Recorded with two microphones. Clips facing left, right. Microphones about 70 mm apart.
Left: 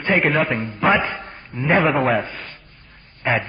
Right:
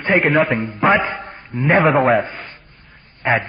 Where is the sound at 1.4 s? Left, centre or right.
Centre.